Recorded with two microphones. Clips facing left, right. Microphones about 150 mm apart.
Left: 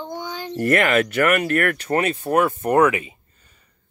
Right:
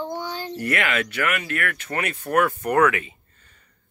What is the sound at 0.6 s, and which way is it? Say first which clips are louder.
Speech: left 8 dB; 45° left (ahead or behind).